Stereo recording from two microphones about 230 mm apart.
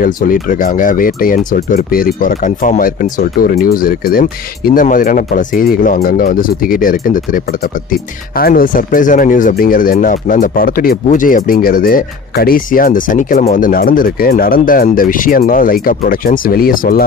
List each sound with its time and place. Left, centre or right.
0.0 s speech: left